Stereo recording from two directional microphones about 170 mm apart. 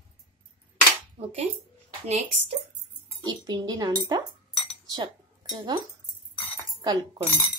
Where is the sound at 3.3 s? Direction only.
25° right (ahead or behind).